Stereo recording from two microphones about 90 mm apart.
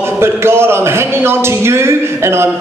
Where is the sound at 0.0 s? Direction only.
30° right (ahead or behind).